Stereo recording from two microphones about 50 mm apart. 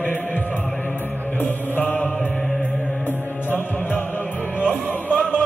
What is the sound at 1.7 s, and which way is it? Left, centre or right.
Mantra, left.